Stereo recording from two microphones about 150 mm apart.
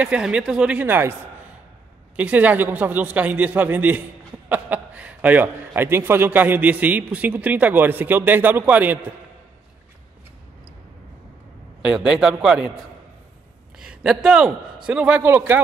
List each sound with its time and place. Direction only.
0.0 s a man's voice: 5° right (ahead or behind)
2.1 s a man's voice: 10° right (ahead or behind)
11.8 s a man's voice: 5° right (ahead or behind)
13.7 s a man's voice: 5° right (ahead or behind)